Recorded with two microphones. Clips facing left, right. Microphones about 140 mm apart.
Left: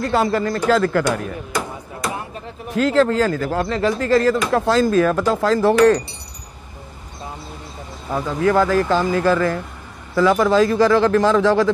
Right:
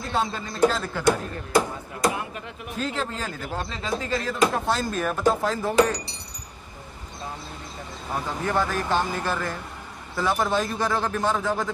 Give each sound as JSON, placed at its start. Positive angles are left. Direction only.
{"t": 0.0, "sound": "speech", "side_deg": 75}
{"t": 2.1, "sound": "a sound", "side_deg": 35}
{"t": 2.7, "sound": "speech", "side_deg": 90}
{"t": 8.4, "sound": "speech", "side_deg": 90}